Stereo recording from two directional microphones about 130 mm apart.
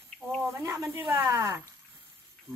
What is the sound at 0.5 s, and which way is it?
Speech, 20° right (ahead or behind).